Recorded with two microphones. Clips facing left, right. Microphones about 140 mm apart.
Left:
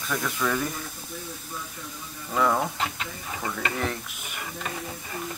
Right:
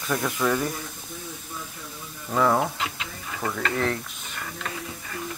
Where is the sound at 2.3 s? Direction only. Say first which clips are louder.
Right 2 dB; 5° right (ahead or behind).